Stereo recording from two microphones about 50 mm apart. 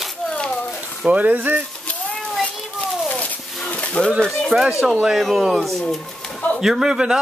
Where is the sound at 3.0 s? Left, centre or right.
Left.